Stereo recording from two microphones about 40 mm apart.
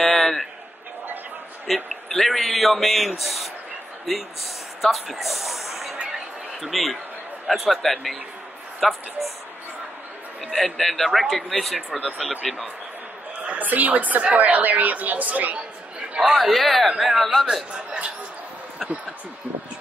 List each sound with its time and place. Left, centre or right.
0.0 s a sound: centre
1.7 s a man's voice: centre
10.6 s a man's voice: centre
13.6 s a woman's voice: right
16.3 s a man's voice: centre